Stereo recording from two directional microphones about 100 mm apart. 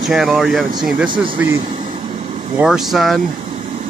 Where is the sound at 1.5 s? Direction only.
50° right (ahead or behind).